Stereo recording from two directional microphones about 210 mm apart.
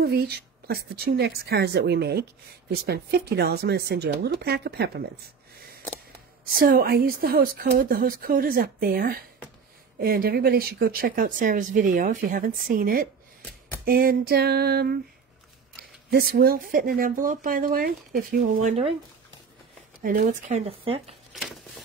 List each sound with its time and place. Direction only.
0.0 s speech: 50° right (ahead or behind)
6.5 s speech: 45° right (ahead or behind)
20.0 s speech: 40° right (ahead or behind)
21.3 s a sound: centre (ahead or behind)